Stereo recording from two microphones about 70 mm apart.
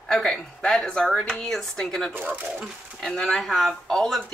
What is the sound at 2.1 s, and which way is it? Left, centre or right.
Speech, right.